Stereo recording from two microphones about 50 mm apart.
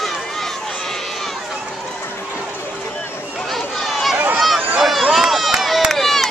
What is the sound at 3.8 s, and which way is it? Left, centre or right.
Run, centre.